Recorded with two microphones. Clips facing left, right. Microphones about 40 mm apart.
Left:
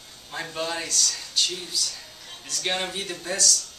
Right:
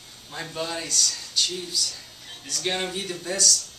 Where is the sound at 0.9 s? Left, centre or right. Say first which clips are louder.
Even; centre.